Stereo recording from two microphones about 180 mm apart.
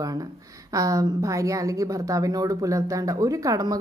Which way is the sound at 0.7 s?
20° right (ahead or behind).